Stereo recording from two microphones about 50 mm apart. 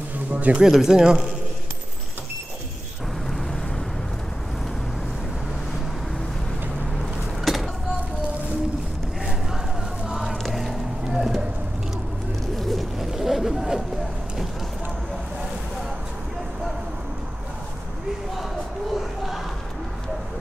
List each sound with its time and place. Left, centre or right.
0.3 s speech: right
0.7 s speech: centre
7.0 s vehicle: centre
10.0 s music: centre
10.4 s a sound: centre
12.5 s a sound: centre
13.1 s boat: centre
18.9 s battle cry: centre